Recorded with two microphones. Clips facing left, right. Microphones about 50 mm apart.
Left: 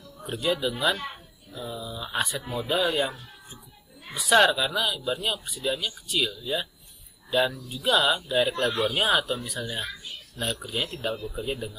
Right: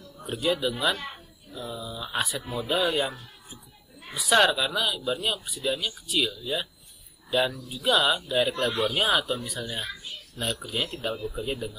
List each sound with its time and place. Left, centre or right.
0.2 s speech: centre